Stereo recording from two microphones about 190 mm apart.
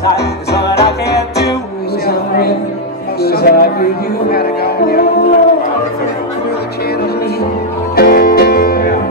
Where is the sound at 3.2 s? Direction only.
55° left (ahead or behind).